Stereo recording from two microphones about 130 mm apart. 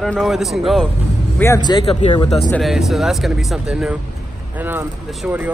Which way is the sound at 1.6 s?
35° left (ahead or behind).